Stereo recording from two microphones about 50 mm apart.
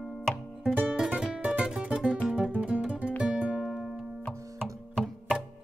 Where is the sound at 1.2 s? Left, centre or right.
Right.